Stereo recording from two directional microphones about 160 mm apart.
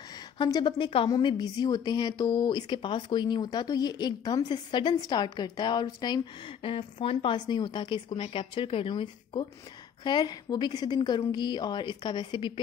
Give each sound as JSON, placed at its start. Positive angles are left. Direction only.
{"t": 0.4, "sound": "a woman's voice", "side_deg": 25}